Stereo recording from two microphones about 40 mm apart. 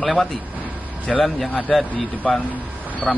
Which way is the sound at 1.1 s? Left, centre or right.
Centre.